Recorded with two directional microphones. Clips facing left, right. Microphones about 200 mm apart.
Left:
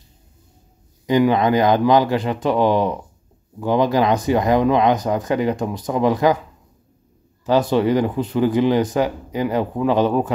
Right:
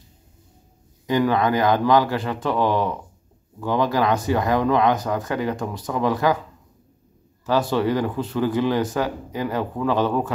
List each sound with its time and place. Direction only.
1.0 s speech: 20° left (ahead or behind)
7.4 s speech: 20° left (ahead or behind)